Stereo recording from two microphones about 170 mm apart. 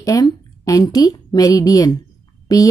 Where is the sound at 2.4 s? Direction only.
20° left (ahead or behind).